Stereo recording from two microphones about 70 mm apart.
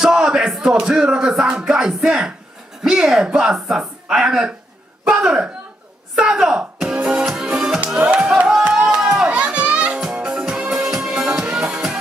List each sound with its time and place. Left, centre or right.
0.0 s music: centre
2.8 s speech: centre
5.0 s a sound: centre
6.1 s music: centre